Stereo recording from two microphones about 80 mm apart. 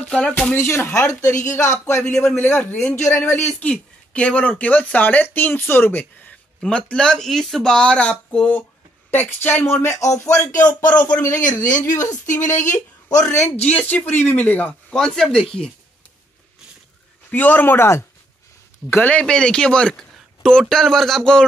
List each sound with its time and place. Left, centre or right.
0.6 s speech: left
2.3 s speech: left
3.6 s speech: centre
6.6 s speech: centre; by 10.4 s left
10.9 s speech: centre
11.2 s speech: left
13.2 s speech: centre
15.0 s speech: centre
17.3 s speech: left
19.0 s speech: centre